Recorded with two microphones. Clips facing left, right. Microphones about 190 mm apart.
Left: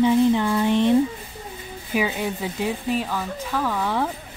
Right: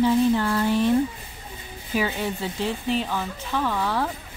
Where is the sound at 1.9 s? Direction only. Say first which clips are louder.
Left 1 dB; 10° left (ahead or behind).